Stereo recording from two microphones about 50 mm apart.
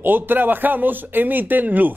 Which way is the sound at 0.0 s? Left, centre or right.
Right.